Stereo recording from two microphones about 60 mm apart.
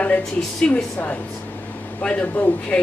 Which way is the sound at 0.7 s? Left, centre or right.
Centre.